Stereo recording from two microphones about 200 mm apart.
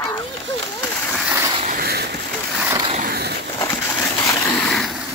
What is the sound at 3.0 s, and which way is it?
Skateboard, 50° right (ahead or behind).